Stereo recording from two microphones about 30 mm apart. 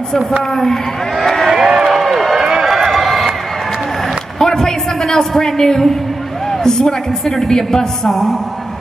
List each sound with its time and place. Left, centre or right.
1.2 s a sound: centre
1.5 s crowd: centre
2.0 s run: centre
4.4 s a woman's voice: centre
6.5 s a sound: centre
6.8 s a woman's voice: left
8.1 s a woman's voice: centre